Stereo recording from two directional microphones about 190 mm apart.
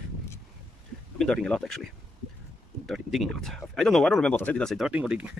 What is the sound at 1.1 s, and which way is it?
Speech, 5° left (ahead or behind).